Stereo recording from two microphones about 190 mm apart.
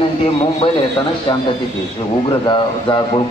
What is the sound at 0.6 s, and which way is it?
Speech, 25° left (ahead or behind).